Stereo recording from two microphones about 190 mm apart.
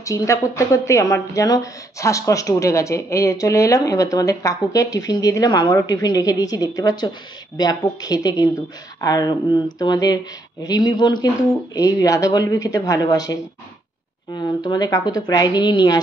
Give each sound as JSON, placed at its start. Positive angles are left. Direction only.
{"t": 0.0, "sound": "a woman's voice", "side_deg": 15}